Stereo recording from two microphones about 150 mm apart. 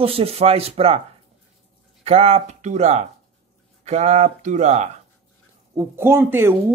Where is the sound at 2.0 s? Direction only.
40° right (ahead or behind).